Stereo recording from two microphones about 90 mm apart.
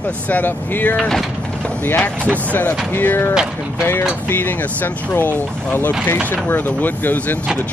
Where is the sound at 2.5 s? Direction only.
20° left (ahead or behind).